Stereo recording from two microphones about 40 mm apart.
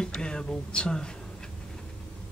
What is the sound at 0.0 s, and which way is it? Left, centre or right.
Speech, centre.